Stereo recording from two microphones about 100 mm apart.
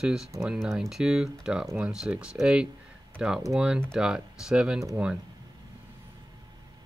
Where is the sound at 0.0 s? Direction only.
5° right (ahead or behind).